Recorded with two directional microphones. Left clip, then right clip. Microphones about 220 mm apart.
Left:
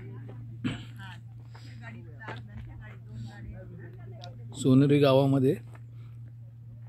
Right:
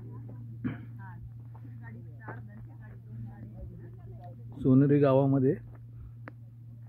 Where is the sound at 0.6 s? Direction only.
20° left (ahead or behind).